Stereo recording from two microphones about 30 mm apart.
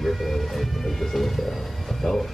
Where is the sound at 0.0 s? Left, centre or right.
Centre.